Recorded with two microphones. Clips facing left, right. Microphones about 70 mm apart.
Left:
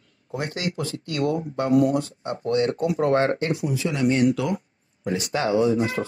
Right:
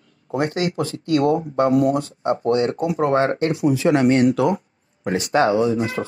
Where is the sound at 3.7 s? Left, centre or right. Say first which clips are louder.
Right 9 dB; right.